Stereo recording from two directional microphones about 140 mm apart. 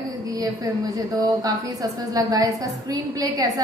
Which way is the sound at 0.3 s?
25° right (ahead or behind).